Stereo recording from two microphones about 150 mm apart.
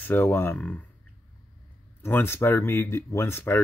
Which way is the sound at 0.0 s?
10° left (ahead or behind).